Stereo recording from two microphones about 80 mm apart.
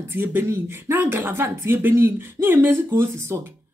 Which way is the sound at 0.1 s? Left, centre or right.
Right.